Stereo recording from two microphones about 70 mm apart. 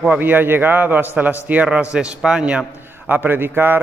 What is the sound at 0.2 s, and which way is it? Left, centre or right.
A man's voice, right.